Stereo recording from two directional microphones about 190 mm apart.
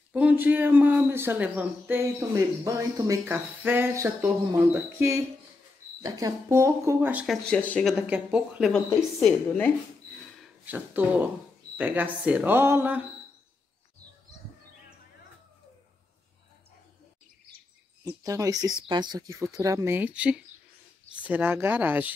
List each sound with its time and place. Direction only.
0.1 s speech: 5° right (ahead or behind)
7.4 s a woman's voice: 5° left (ahead or behind)
7.9 s a woman's voice: 5° right (ahead or behind)
10.6 s speech: 10° right (ahead or behind)
18.0 s speech: 15° right (ahead or behind)